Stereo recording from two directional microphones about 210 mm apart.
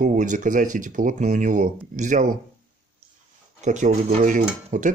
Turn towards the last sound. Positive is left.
turn(degrees=-40)  # may be behind; listen again after turning